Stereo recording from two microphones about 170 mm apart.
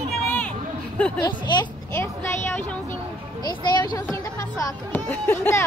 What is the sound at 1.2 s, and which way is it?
Speech, 25° left (ahead or behind).